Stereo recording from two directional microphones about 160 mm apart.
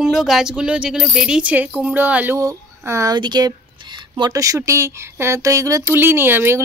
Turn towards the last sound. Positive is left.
turn(degrees=-15)  # may be behind; listen again after turning